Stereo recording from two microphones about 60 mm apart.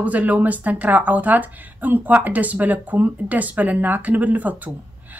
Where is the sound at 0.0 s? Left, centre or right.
Right.